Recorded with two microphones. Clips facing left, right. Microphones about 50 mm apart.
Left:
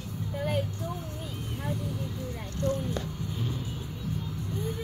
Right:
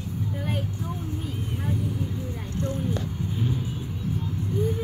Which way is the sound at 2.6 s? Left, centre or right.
Right.